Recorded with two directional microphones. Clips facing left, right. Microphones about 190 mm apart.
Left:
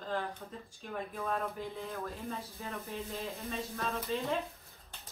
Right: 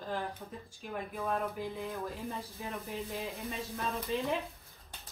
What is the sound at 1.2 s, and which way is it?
Speech, centre (ahead or behind).